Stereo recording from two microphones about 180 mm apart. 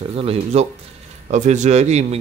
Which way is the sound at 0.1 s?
35° right (ahead or behind).